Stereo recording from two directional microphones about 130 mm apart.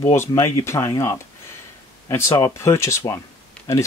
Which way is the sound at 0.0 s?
20° left (ahead or behind).